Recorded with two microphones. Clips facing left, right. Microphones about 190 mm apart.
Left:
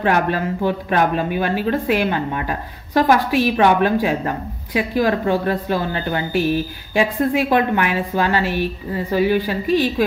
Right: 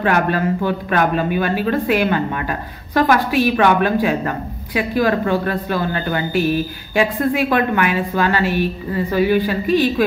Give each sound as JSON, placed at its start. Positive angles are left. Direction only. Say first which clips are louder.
{"t": 0.0, "sound": "a woman's voice", "louder": "right 1 dB", "side_deg": 35}